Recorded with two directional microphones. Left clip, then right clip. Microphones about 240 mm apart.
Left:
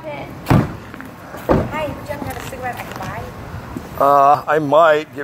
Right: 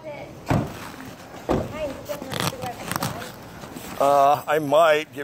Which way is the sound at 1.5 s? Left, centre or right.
Right.